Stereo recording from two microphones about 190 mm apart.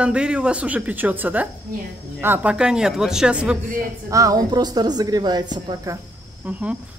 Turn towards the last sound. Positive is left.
turn(degrees=-5)  # may be behind; listen again after turning